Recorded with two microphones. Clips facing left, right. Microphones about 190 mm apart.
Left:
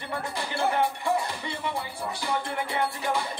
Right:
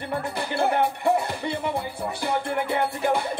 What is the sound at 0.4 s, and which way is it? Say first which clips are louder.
Music: right 3 dB; 60° right (ahead or behind).